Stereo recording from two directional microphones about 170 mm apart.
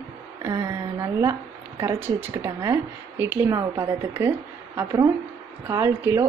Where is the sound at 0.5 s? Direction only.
20° right (ahead or behind).